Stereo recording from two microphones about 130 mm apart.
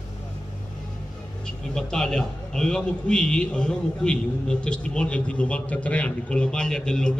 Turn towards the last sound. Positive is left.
turn(degrees=5)  # may be behind; listen again after turning